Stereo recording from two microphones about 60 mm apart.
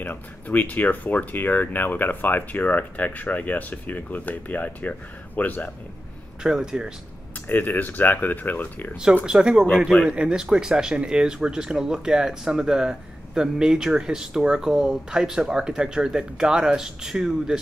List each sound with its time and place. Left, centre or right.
0.0 s speech: left
6.4 s speech: centre
7.4 s speech: left
9.2 s speech: centre